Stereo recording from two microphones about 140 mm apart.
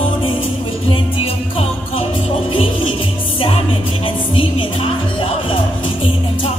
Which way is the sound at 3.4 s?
40° left (ahead or behind).